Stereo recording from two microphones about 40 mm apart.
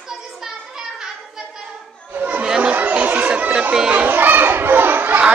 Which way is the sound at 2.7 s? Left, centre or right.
Right.